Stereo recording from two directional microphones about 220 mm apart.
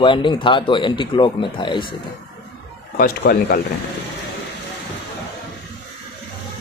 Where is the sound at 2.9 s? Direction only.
45° left (ahead or behind).